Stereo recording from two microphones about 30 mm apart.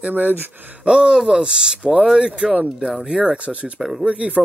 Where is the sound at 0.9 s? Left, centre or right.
Right.